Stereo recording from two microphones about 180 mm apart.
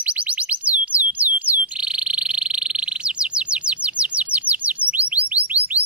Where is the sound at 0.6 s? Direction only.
10° right (ahead or behind).